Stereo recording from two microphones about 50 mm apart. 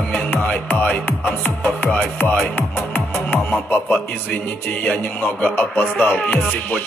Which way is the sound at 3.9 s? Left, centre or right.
Left.